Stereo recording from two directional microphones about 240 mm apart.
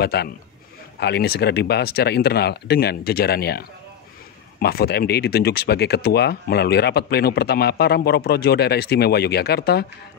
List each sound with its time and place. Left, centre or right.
0.0 s a man's voice: left